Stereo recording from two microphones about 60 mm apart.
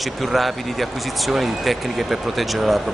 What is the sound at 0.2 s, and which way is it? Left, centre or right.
Speech, centre.